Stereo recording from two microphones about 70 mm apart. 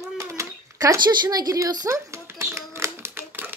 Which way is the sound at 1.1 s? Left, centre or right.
Right.